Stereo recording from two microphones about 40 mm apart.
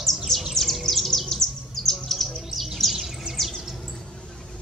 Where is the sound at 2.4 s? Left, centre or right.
Centre.